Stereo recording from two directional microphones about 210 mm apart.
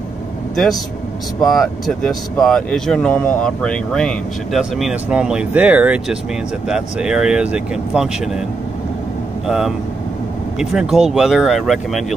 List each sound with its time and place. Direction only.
1.4 s speech: centre (ahead or behind)
9.5 s speech: centre (ahead or behind)